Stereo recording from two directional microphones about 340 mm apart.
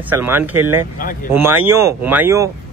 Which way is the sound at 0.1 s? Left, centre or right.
Centre.